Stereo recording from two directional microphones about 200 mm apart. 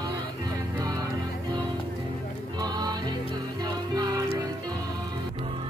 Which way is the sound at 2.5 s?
20° right (ahead or behind).